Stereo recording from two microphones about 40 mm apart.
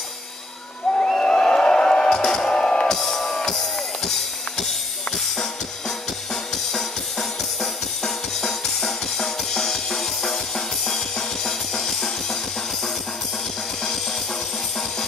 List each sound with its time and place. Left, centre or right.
0.9 s music: centre
2.9 s music: centre
5.1 s drum kit: centre